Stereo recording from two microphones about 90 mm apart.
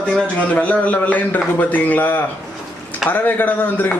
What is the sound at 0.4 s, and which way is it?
Speech, 15° left (ahead or behind).